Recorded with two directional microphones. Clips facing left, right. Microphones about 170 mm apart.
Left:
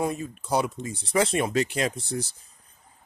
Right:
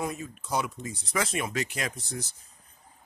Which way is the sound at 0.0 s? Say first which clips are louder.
Left 5 dB; 30° left (ahead or behind).